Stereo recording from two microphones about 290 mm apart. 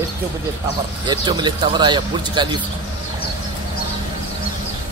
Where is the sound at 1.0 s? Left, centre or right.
Centre.